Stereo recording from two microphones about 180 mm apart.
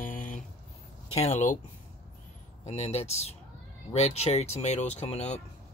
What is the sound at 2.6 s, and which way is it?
Speech, 35° left (ahead or behind).